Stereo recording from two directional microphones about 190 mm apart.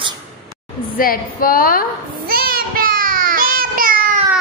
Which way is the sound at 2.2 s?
50° right (ahead or behind).